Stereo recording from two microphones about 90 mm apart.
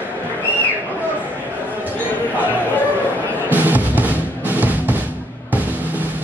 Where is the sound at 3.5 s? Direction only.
20° right (ahead or behind).